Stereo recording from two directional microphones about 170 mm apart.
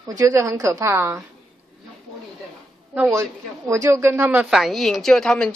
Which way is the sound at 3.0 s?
15° right (ahead or behind).